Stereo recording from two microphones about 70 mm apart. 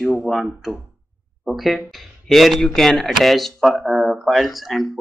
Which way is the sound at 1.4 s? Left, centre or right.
Centre.